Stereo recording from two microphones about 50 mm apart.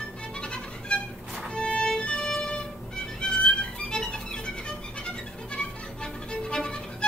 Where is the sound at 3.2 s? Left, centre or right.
Centre.